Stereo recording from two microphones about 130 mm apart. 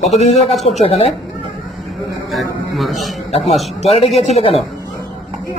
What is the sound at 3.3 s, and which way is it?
A man's voice, 55° left (ahead or behind).